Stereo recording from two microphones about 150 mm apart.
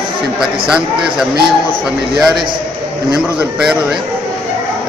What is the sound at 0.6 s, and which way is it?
A man's voice, 5° right (ahead or behind).